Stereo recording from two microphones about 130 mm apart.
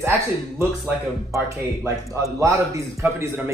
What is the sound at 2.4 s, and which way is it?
A man's voice, 25° right (ahead or behind).